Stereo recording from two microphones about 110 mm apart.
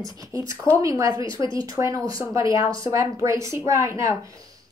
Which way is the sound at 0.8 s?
30° right (ahead or behind).